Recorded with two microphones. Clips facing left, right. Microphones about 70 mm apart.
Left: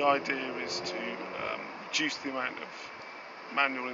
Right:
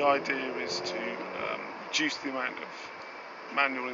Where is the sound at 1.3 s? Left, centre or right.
Centre.